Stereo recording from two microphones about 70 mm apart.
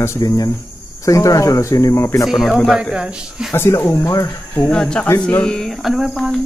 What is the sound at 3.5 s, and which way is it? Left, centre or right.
Speech, left.